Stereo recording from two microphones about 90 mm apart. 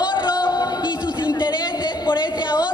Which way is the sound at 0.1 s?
60° left (ahead or behind).